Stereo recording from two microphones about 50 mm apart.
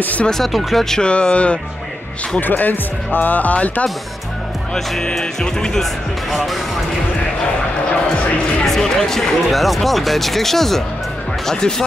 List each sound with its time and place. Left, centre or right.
0.0 s speech: left
0.5 s speech: centre
1.0 s speech: left
2.4 s speech: left
4.7 s speech: centre
6.3 s speech: centre
8.6 s speech: centre